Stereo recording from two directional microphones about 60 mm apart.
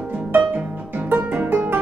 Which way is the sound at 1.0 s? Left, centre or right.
Right.